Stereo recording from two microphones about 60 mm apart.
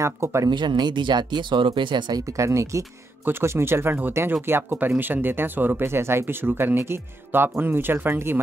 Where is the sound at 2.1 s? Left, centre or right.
Right.